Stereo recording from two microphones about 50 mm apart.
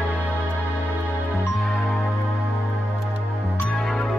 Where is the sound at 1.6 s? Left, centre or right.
Centre.